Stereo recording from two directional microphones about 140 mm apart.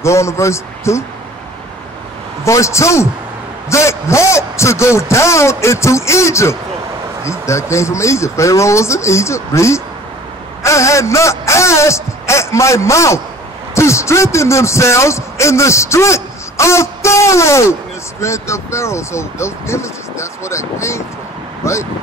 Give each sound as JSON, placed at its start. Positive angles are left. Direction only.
{"t": 0.0, "sound": "speech", "side_deg": 20}
{"t": 2.4, "sound": "speech", "side_deg": 20}
{"t": 21.6, "sound": "speech", "side_deg": 20}